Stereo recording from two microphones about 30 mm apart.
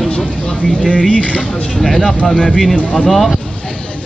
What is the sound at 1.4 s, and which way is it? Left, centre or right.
Speech, left.